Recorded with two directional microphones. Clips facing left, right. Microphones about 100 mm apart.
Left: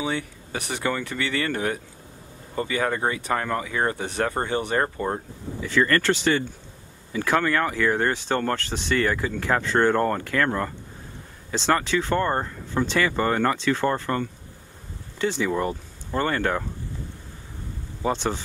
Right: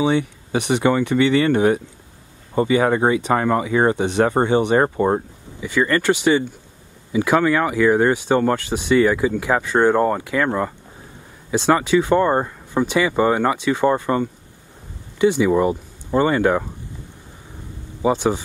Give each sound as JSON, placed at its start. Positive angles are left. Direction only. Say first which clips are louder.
{"t": 0.0, "sound": "speech", "louder": "right 9 dB", "side_deg": -20}
{"t": 18.0, "sound": "speech", "louder": "right 7 dB", "side_deg": -10}